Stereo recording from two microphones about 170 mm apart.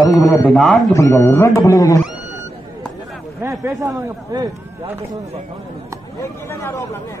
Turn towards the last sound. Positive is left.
turn(degrees=15)  # may be behind; listen again after turning